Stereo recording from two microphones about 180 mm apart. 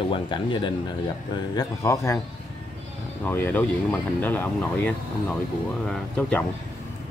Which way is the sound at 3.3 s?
10° left (ahead or behind).